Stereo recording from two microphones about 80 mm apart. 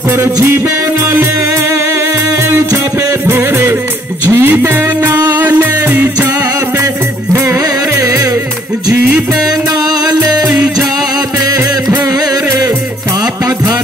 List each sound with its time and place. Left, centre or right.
0.1 s music: right
2.7 s music: right
7.9 s music: right
12.1 s music: right